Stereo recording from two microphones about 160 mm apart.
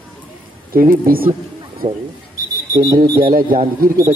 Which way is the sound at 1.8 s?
30° right (ahead or behind).